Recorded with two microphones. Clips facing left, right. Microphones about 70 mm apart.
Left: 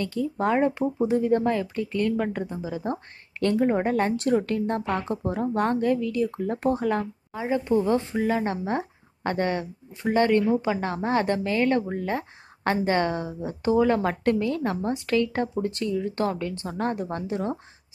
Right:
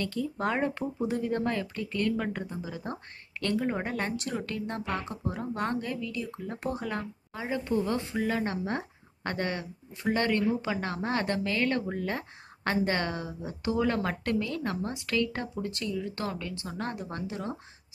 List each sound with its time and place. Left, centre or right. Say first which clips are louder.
0.0 s speech: left 5 dB; left
7.3 s speech: left 6 dB; left